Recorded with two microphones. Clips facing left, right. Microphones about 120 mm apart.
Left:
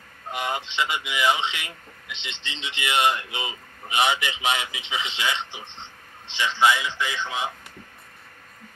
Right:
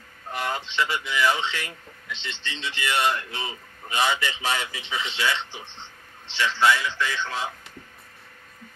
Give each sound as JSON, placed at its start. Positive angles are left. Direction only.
{"t": 0.3, "sound": "speech", "side_deg": 15}